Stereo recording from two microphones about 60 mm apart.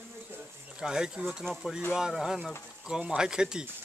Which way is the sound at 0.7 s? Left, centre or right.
Centre.